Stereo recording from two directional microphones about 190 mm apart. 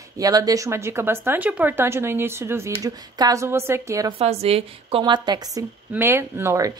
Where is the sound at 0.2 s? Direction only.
20° right (ahead or behind).